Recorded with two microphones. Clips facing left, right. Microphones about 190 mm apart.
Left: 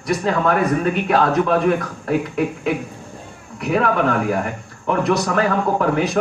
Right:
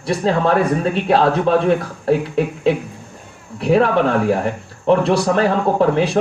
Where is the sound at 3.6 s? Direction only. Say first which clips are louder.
Right 4 dB; 30° right (ahead or behind).